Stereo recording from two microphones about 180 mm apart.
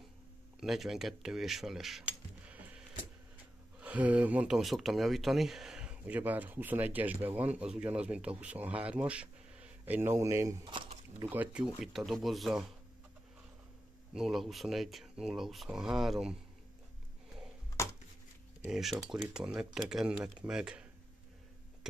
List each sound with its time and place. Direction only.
0.6 s speech: centre (ahead or behind)
3.8 s speech: 10° right (ahead or behind)
11.2 s speech: 5° right (ahead or behind)
14.1 s speech: centre (ahead or behind)
18.7 s speech: centre (ahead or behind)